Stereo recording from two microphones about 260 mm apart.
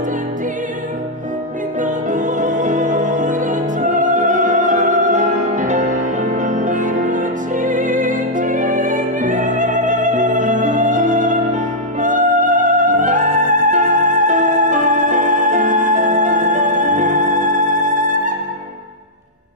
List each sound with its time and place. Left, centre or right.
1.8 s music: right